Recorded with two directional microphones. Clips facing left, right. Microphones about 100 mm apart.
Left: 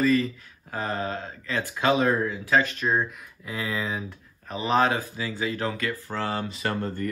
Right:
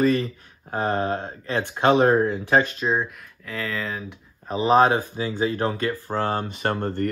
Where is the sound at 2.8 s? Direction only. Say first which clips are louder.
Right 1 dB; 20° right (ahead or behind).